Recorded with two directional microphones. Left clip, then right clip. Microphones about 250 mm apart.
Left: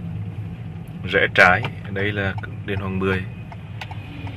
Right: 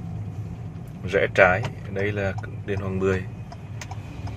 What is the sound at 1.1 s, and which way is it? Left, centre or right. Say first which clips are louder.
Speech: left 3 dB; centre.